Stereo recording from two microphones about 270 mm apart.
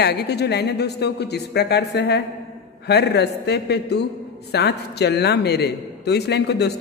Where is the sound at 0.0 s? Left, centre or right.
Left.